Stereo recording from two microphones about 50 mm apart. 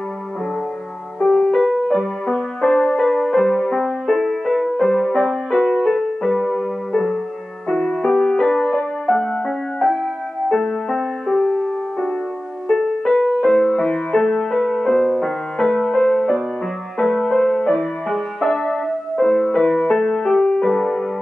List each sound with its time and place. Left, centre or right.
1.2 s music: centre
6.9 s music: centre
10.5 s music: centre
11.3 s music: centre
19.6 s music: left